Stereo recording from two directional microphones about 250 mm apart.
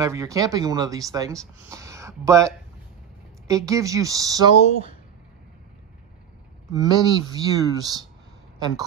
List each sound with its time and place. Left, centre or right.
0.0 s speech: centre
6.7 s speech: centre